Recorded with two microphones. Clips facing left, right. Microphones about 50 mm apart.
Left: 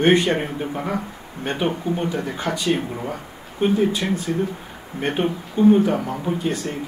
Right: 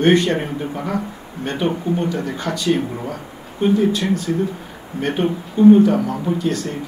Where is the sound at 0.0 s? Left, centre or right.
Centre.